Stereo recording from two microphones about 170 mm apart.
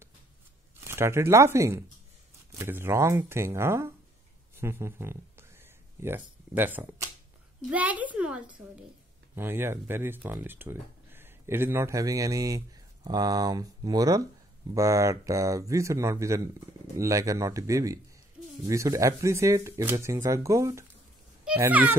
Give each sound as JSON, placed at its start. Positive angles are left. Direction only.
{"t": 0.7, "sound": "speech", "side_deg": -15}